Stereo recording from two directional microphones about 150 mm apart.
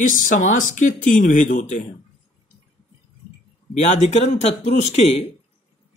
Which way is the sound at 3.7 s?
50° left (ahead or behind).